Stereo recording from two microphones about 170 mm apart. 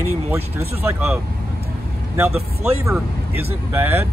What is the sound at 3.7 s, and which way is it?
Speech, 15° right (ahead or behind).